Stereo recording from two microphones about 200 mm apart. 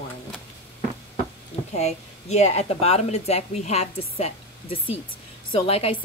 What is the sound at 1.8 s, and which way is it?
A woman's voice, 35° left (ahead or behind).